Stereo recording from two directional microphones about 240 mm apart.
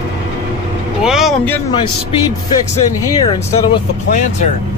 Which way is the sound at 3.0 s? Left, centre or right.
Centre.